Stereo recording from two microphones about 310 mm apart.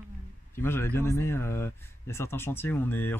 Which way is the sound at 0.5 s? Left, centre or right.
Centre.